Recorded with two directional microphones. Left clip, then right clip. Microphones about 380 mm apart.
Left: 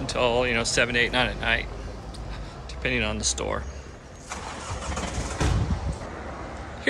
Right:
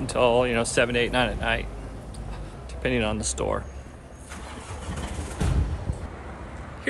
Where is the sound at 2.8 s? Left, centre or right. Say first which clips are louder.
Even; centre.